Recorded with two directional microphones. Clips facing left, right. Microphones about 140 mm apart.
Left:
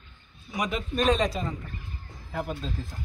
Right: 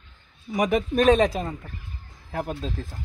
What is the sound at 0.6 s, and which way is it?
A man's voice, 60° right (ahead or behind).